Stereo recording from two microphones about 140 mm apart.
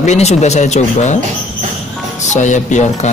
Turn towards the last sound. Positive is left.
turn(degrees=60)  # may be behind; listen again after turning